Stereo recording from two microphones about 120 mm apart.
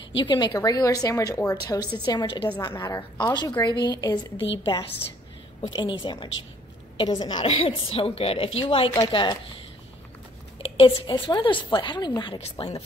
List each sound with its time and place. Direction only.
0.2 s a woman's voice: 40° left (ahead or behind)
7.4 s a woman's voice: 50° left (ahead or behind)
10.6 s a woman's voice: 45° left (ahead or behind)
12.4 s speech: 55° left (ahead or behind)